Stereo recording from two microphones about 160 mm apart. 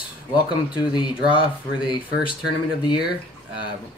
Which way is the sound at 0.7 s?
30° left (ahead or behind).